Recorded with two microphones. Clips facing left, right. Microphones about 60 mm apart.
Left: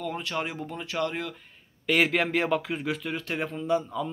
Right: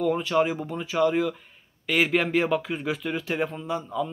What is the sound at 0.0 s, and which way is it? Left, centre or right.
Speech, centre.